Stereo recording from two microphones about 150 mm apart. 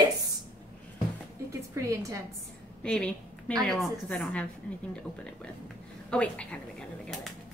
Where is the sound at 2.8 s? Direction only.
5° left (ahead or behind).